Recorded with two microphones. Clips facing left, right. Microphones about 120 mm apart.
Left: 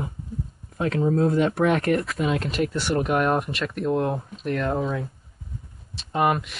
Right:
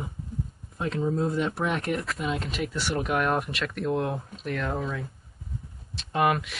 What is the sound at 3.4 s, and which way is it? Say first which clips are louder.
Speech: left 3 dB; centre (ahead or behind).